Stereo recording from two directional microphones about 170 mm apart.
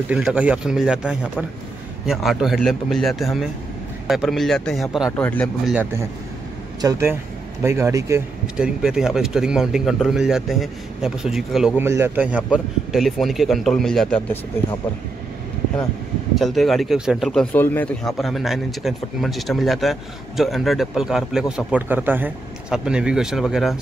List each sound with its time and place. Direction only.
0.1 s speech: 5° right (ahead or behind)
5.1 s speech: 10° left (ahead or behind)
5.7 s speech: 10° right (ahead or behind)
8.5 s speech: 5° right (ahead or behind)
11.8 s speech: 15° right (ahead or behind); by 14.4 s 5° left (ahead or behind)
16.3 s speech: centre (ahead or behind)